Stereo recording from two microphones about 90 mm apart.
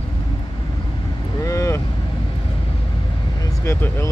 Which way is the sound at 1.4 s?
35° left (ahead or behind).